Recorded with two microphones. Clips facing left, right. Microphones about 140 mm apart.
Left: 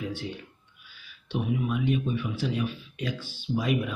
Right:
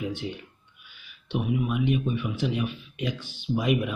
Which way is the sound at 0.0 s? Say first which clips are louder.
Right 2 dB; 20° right (ahead or behind).